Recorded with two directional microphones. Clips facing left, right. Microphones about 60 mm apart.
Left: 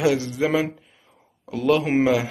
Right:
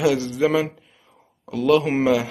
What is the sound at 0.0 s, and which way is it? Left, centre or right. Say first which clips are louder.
Speech: right 2 dB; left.